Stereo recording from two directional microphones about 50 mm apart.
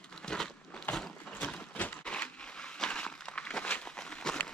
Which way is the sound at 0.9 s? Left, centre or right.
Left.